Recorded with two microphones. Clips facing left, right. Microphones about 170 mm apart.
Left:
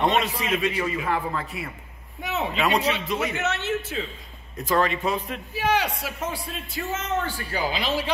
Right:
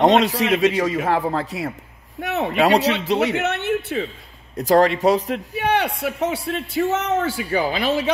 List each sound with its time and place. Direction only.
0.0 s a man's voice: 80° right
2.2 s speech: 60° right (ahead or behind)
4.8 s a man's voice: 80° right
7.7 s speech: 55° right (ahead or behind)